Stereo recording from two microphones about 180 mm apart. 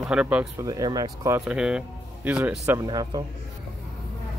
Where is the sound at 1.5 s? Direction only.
5° right (ahead or behind).